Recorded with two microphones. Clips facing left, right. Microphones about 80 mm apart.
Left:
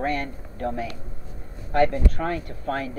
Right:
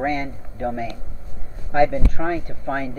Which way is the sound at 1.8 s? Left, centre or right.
Centre.